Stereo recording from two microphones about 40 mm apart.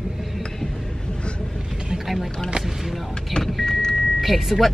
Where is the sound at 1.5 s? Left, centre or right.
Centre.